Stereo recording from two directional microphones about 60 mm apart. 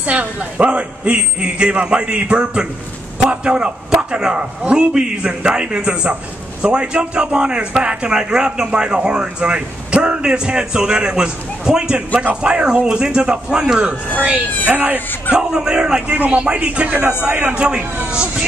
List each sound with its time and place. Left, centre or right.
0.0 s a man's voice: right
15.3 s a man's voice: centre